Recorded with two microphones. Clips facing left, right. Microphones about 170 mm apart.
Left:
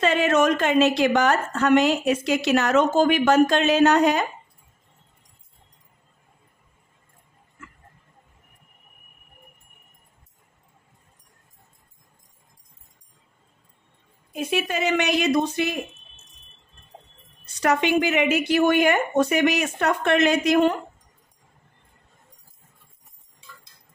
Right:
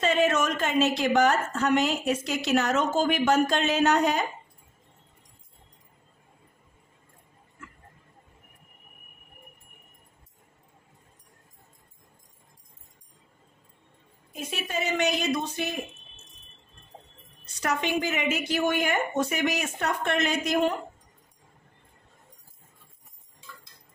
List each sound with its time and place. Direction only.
0.0 s a woman's voice: 75° left (ahead or behind)
14.3 s a woman's voice: 85° left
17.6 s a woman's voice: 85° left